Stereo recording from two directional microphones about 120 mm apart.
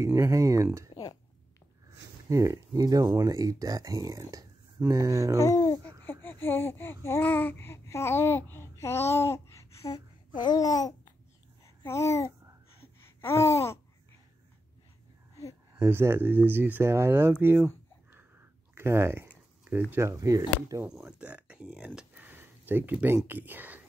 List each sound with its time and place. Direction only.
0.0 s speech: 25° right (ahead or behind)
2.2 s speech: 25° right (ahead or behind)
5.4 s speech: 25° left (ahead or behind)
10.3 s babbling: 35° left (ahead or behind)
15.7 s speech: 20° right (ahead or behind)
20.1 s speech: 30° right (ahead or behind)
21.2 s speech: 10° right (ahead or behind)